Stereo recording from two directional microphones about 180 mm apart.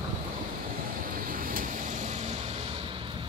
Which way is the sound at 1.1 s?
50° right (ahead or behind).